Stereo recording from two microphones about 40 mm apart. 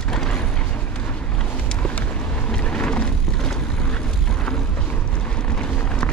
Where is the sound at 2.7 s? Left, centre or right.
Left.